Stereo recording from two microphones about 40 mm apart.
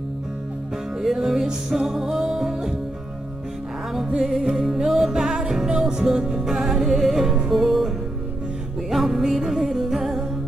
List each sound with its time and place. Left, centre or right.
1.1 s music: centre
4.2 s music: centre
6.5 s music: centre
8.9 s music: centre